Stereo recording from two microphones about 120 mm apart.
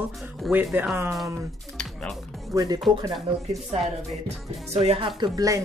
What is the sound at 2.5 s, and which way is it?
Speech, 35° right (ahead or behind).